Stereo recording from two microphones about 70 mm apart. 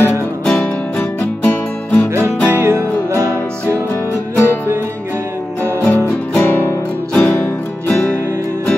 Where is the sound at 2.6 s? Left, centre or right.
Right.